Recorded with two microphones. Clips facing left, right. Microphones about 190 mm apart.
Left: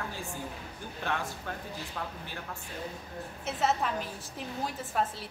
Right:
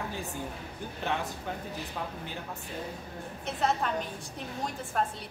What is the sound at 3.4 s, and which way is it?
Speech, 5° left (ahead or behind).